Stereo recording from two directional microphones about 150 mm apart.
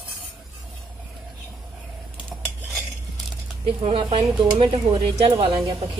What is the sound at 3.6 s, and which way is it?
Speech, 40° right (ahead or behind).